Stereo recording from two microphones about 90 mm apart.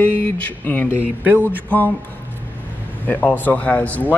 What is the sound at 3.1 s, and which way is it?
Speech, 20° left (ahead or behind).